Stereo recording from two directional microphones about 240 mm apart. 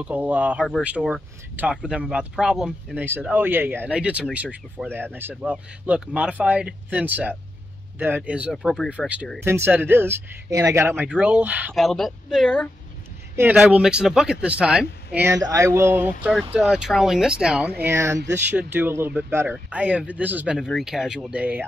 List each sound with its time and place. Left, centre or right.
0.0 s speech: centre